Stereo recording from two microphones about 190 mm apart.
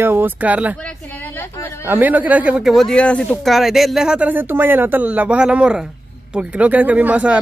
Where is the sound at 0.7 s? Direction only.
5° left (ahead or behind).